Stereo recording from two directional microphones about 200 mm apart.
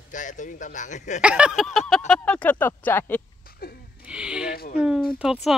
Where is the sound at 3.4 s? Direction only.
50° left (ahead or behind).